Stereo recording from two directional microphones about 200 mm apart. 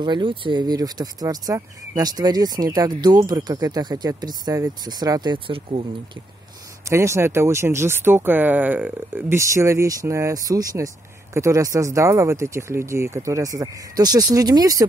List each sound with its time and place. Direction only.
0.0 s speech: 25° right (ahead or behind)
6.8 s speech: 15° right (ahead or behind)